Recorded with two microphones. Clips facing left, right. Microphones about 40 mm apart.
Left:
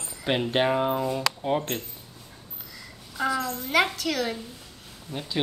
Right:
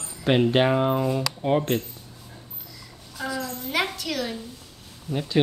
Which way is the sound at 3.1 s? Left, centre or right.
Left.